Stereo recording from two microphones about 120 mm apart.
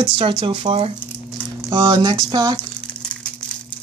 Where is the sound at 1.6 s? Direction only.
30° right (ahead or behind).